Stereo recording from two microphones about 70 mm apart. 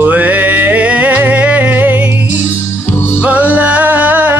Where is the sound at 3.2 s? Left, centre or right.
Right.